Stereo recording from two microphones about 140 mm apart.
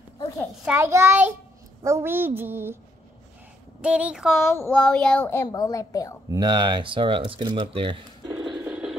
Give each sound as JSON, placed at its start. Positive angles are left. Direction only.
{"t": 0.7, "sound": "a woman's voice", "side_deg": -20}
{"t": 3.8, "sound": "a woman's voice", "side_deg": -10}
{"t": 4.4, "sound": "a woman's voice", "side_deg": 15}
{"t": 6.2, "sound": "speech", "side_deg": -30}